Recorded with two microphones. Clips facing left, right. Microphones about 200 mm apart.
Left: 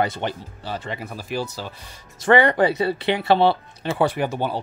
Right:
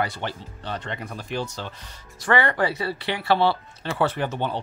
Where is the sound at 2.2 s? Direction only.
20° left (ahead or behind).